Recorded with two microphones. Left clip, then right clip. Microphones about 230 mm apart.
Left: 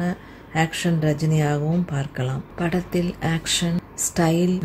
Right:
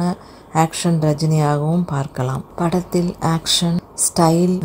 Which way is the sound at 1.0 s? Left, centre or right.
Centre.